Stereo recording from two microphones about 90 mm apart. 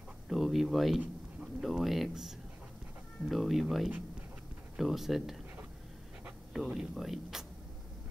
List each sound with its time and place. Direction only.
0.3 s speech: centre (ahead or behind)
6.5 s speech: 5° right (ahead or behind)